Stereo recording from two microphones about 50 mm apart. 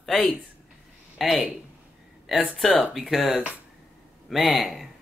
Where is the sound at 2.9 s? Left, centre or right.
Centre.